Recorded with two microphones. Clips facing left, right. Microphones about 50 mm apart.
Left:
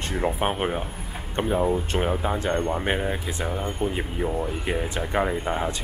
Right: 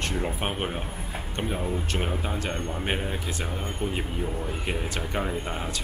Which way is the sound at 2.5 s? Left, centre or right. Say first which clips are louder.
Left 5 dB; left.